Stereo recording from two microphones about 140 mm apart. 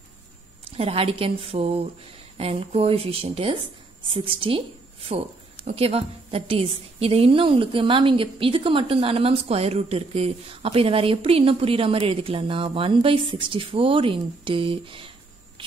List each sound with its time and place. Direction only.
0.7 s a woman's voice: 45° right (ahead or behind)